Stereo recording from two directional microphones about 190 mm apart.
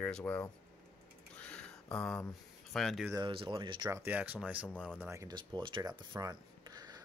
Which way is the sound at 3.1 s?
25° right (ahead or behind).